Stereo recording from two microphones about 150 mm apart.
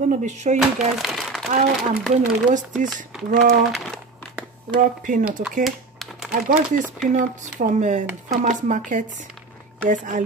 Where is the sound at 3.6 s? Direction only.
Centre (ahead or behind).